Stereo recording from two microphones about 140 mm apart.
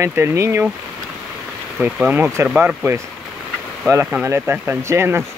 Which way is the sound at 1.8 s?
10° right (ahead or behind).